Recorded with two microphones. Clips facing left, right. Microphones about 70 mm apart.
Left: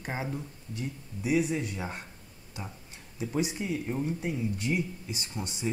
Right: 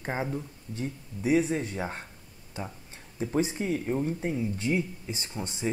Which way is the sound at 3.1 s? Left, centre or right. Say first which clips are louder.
Right 3 dB; right.